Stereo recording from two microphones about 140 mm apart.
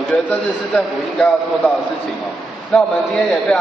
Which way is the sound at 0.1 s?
5° left (ahead or behind).